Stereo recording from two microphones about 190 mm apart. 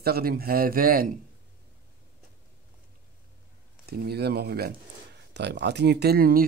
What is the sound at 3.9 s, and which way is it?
Speech, 55° right (ahead or behind).